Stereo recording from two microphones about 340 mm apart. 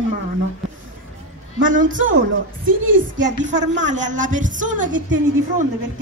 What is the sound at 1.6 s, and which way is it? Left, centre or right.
Speech, right.